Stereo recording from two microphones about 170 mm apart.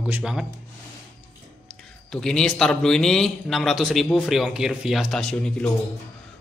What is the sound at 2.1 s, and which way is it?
A man's voice, 5° left (ahead or behind).